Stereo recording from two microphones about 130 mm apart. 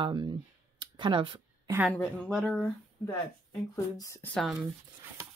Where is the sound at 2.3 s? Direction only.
Centre (ahead or behind).